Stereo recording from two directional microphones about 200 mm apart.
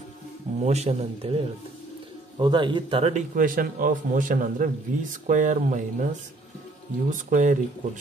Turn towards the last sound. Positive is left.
turn(degrees=-40)  # may be behind; listen again after turning